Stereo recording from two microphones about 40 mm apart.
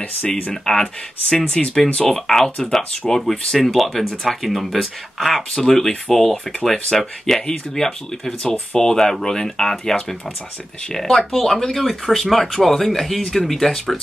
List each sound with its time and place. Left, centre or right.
0.7 s speech: centre
2.0 s speech: centre
8.4 s speech: left
8.8 s speech: centre
11.1 s speech: centre
13.2 s speech: centre
13.5 s speech: centre